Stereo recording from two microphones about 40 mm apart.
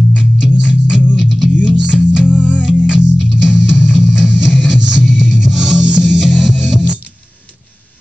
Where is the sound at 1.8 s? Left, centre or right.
Centre.